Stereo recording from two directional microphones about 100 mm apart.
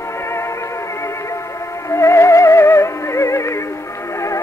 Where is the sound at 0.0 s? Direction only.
25° left (ahead or behind).